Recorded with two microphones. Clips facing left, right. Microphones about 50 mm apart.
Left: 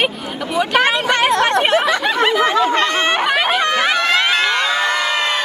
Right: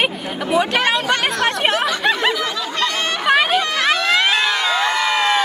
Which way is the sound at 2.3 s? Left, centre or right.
Left.